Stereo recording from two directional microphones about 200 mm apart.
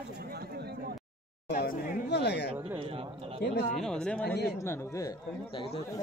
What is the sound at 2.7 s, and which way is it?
Speech, 25° right (ahead or behind).